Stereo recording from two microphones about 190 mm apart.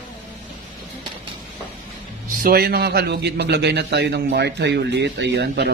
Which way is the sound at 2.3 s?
50° right (ahead or behind).